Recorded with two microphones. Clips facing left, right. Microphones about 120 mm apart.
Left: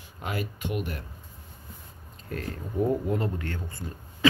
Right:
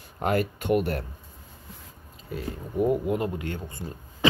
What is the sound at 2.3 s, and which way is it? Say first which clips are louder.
Speech: right 1 dB; 10° right (ahead or behind).